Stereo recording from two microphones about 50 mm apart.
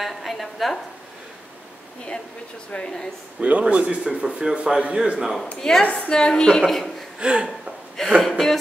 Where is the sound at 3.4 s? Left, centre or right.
Right.